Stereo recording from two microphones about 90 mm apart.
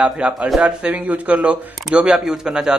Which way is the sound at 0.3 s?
Centre (ahead or behind).